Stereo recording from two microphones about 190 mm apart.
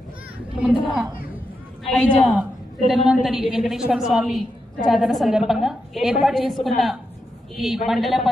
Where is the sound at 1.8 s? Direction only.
5° right (ahead or behind).